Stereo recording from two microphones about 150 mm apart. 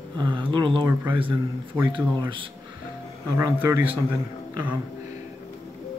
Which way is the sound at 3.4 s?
15° right (ahead or behind).